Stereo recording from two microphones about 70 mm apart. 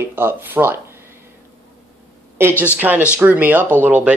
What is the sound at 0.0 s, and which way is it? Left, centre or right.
Speech, right.